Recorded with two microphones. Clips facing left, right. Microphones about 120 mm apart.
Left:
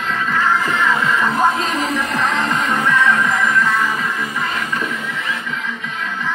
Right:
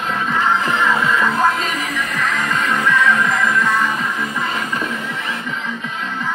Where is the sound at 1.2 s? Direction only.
20° left (ahead or behind).